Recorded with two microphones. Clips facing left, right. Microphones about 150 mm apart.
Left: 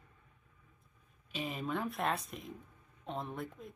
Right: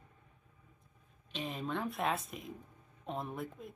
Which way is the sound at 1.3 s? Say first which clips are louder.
Left 1 dB; 5° left (ahead or behind).